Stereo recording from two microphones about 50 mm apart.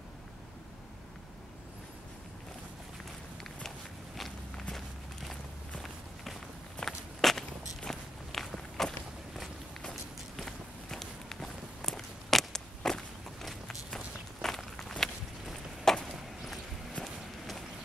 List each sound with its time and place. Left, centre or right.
4.7 s walk: centre
6.8 s walk: centre
7.2 s walk: centre
15.5 s a sound: centre
17.0 s run: centre